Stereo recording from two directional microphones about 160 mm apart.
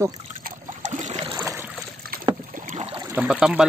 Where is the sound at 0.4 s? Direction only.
50° right (ahead or behind).